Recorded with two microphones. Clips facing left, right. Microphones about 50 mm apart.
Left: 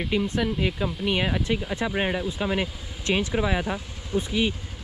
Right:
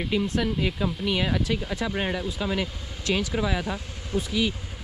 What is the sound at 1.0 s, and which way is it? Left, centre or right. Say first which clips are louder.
Speech: left 1 dB; centre.